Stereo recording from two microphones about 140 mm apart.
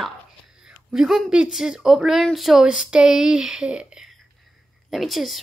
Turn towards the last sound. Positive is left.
turn(degrees=0)  # may be behind; listen again after turning